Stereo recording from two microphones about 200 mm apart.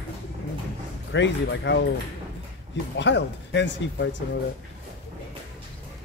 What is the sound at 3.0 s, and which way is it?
Speech, 60° left (ahead or behind).